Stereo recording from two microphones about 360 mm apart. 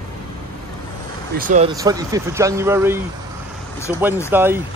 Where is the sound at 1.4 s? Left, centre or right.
Right.